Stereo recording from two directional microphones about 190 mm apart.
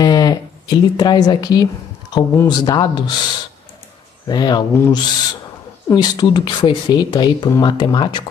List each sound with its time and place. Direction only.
0.0 s speech: 20° left (ahead or behind)
4.3 s speech: 20° left (ahead or behind)